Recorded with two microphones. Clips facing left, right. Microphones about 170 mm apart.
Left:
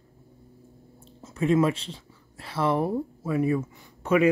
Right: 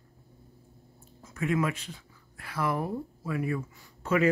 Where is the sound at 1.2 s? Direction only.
30° left (ahead or behind).